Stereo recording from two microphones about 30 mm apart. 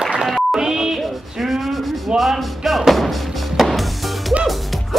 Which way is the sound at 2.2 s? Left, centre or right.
Centre.